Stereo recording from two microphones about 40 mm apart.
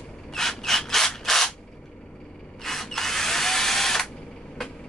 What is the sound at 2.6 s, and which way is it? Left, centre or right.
Drill, centre.